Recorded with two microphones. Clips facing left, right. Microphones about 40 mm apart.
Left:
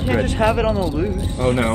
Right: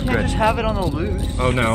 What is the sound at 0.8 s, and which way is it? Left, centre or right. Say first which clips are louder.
Speech: left 2 dB; centre.